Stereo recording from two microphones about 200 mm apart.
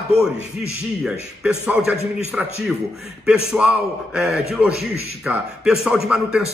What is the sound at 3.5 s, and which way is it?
A man's voice, 5° right (ahead or behind).